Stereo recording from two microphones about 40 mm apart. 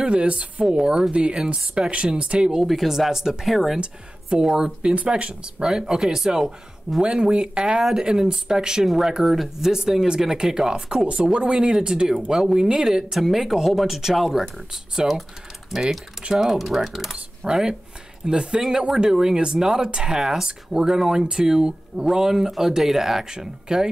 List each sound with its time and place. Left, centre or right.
0.0 s a woman's voice: right
1.1 s speech: right
1.4 s a woman's voice: centre
1.9 s a woman's voice: right
2.6 s speech: centre
3.1 s speech: centre
3.8 s a woman's voice: right; by 14.4 s centre
15.0 s a woman's voice: right
15.7 s speech: centre
17.5 s a woman's voice: centre